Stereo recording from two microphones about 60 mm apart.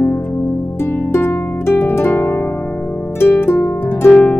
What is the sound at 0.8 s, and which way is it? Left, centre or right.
Harp, left.